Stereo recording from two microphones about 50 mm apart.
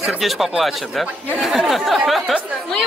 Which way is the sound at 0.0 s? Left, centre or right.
Centre.